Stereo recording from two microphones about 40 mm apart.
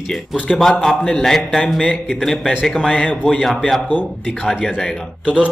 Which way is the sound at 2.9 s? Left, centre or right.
Left.